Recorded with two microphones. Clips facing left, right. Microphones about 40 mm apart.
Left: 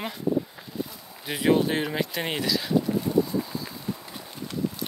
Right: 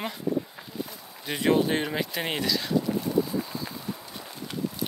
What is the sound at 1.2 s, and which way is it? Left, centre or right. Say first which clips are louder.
Speech: left 1 dB; centre.